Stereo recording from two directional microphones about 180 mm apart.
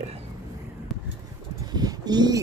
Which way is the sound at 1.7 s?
20° right (ahead or behind).